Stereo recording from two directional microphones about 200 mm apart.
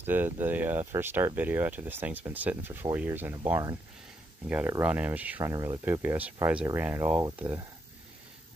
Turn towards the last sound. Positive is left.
turn(degrees=-10)  # may be behind; listen again after turning